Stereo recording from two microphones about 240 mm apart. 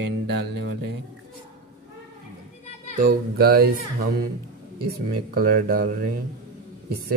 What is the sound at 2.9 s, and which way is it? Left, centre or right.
Speech, right.